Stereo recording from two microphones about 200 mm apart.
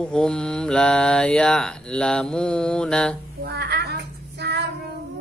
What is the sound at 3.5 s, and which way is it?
Child singing, 55° right (ahead or behind).